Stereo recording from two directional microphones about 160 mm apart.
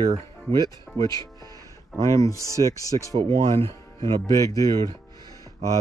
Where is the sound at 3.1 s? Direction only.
30° right (ahead or behind).